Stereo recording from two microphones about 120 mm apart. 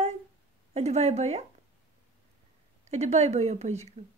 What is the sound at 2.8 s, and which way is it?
Speech, 70° right (ahead or behind).